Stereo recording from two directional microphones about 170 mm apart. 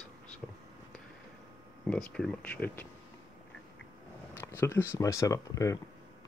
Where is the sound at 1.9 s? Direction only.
5° left (ahead or behind).